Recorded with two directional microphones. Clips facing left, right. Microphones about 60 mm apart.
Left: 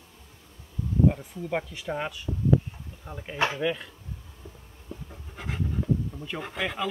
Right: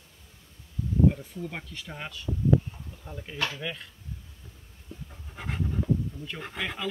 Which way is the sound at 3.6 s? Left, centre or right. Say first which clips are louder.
Left 8 dB; centre.